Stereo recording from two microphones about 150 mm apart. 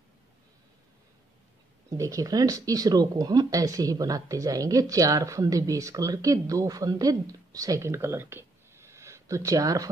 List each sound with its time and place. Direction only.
1.9 s speech: 20° right (ahead or behind)